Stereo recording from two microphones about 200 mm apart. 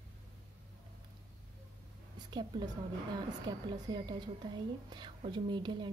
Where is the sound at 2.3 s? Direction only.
20° right (ahead or behind).